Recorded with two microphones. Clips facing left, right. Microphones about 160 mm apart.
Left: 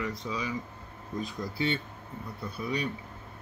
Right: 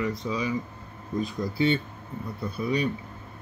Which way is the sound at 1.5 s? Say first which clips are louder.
Right 7 dB; 15° right (ahead or behind).